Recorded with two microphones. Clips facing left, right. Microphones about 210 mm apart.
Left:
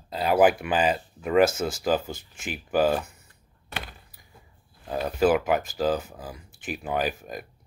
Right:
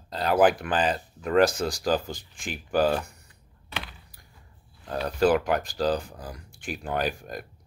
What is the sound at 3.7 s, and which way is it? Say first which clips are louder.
Door: even; 45° left (ahead or behind).